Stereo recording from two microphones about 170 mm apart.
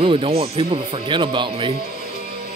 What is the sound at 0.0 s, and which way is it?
Speech, 35° right (ahead or behind).